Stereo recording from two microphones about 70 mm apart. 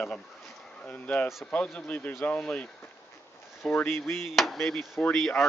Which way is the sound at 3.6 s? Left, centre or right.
Left.